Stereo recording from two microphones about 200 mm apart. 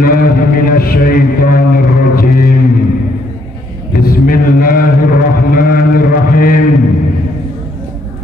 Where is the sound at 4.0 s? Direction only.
45° left (ahead or behind).